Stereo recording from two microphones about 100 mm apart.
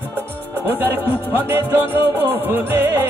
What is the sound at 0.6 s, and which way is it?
Music, 20° right (ahead or behind).